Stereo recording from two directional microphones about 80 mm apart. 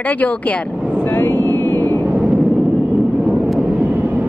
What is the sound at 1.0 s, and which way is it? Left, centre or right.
Vehicle, left.